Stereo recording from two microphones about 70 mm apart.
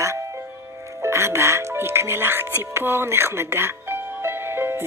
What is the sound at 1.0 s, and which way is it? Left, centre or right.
Speech, right.